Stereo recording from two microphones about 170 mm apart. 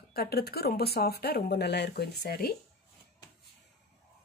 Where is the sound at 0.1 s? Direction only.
65° left (ahead or behind).